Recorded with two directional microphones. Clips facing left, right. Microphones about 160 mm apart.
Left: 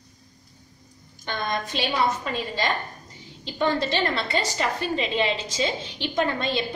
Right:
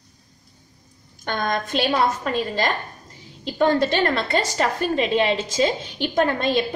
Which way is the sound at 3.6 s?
50° right (ahead or behind).